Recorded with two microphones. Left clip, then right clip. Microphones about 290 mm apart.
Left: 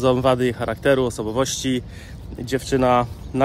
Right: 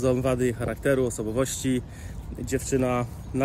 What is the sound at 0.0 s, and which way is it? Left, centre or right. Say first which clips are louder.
Speech: left 6 dB; centre.